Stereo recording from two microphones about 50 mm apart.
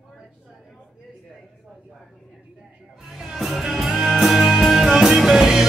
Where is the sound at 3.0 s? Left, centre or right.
Centre.